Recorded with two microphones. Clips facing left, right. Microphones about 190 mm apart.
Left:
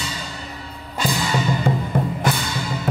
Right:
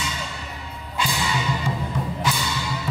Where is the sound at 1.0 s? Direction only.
40° left (ahead or behind).